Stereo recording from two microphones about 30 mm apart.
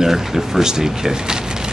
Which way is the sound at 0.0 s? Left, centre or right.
Centre.